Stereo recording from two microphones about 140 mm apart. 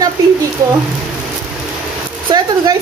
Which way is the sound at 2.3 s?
30° right (ahead or behind).